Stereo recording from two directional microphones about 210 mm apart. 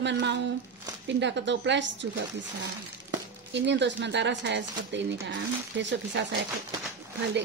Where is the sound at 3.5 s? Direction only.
55° right (ahead or behind).